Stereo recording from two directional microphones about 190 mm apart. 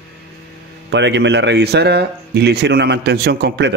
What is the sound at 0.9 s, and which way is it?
A man's voice, 65° right (ahead or behind).